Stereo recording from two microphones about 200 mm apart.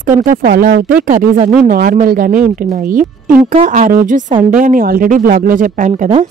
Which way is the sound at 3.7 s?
45° right (ahead or behind).